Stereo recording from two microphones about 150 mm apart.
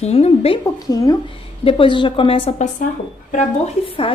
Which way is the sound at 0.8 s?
25° left (ahead or behind).